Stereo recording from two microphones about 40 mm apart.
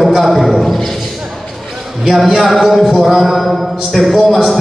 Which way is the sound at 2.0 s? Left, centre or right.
Centre.